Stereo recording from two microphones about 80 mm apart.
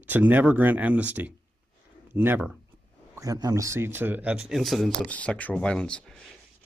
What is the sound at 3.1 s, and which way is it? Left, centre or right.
A man's voice, right.